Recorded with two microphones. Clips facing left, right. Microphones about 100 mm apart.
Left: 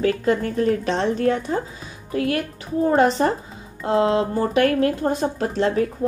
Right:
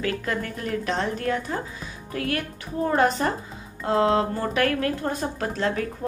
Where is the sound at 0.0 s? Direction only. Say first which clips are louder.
Left 7 dB; 30° left (ahead or behind).